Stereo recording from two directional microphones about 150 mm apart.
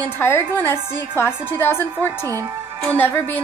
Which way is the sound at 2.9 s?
15° left (ahead or behind).